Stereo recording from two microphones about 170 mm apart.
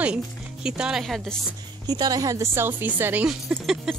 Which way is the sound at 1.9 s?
20° right (ahead or behind).